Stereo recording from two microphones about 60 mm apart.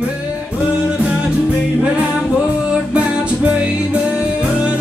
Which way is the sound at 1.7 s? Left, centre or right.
Centre.